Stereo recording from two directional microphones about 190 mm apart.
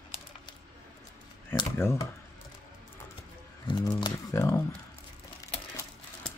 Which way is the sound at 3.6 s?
20° left (ahead or behind).